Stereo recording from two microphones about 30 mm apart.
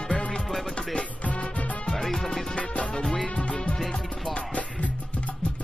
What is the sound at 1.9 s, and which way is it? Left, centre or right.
Music, centre.